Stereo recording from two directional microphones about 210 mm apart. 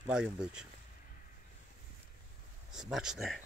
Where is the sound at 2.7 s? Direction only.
Centre (ahead or behind).